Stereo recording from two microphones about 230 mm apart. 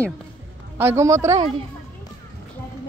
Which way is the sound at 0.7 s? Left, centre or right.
Centre.